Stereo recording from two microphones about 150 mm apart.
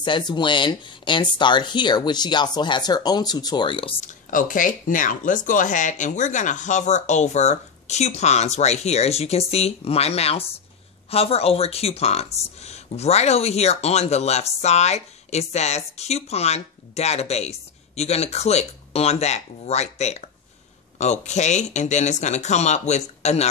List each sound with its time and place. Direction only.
0.0 s speech: 30° left (ahead or behind)
4.0 s speech: 60° left (ahead or behind)